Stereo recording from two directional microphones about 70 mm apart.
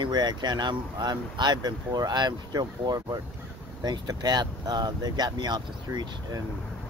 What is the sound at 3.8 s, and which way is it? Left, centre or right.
Speech, right.